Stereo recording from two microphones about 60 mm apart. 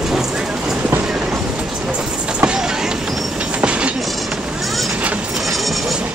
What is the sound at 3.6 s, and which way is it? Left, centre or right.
Train, centre.